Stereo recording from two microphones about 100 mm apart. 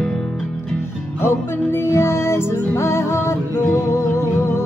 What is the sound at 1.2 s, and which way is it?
Music, 25° left (ahead or behind).